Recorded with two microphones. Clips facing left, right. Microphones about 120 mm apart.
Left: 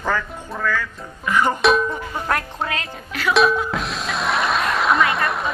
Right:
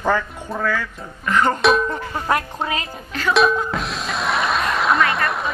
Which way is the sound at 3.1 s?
5° left (ahead or behind).